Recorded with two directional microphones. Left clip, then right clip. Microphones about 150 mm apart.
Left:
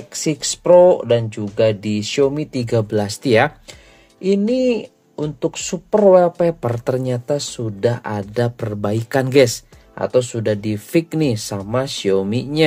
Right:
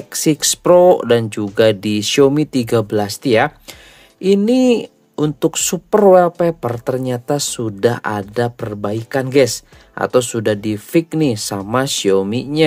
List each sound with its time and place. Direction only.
0.1 s speech: 45° right (ahead or behind)
2.6 s speech: 30° right (ahead or behind)
3.0 s speech: 15° right (ahead or behind)
4.2 s speech: 40° right (ahead or behind)
5.9 s speech: 25° right (ahead or behind)
7.2 s speech: 35° right (ahead or behind)
8.5 s speech: 10° right (ahead or behind)
9.9 s speech: 35° right (ahead or behind)
10.5 s speech: 20° right (ahead or behind)